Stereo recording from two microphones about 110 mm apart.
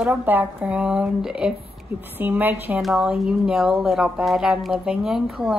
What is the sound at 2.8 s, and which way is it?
Speech, centre (ahead or behind).